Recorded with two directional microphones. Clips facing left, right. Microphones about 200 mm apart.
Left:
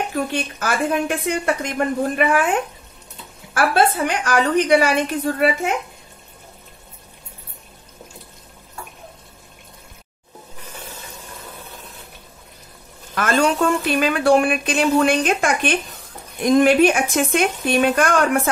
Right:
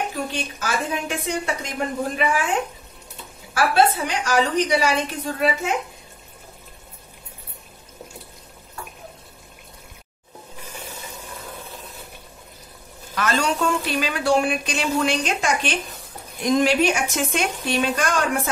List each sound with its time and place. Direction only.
0.1 s speech: 55° left (ahead or behind)
3.5 s speech: 55° left (ahead or behind)
13.1 s speech: 50° left (ahead or behind)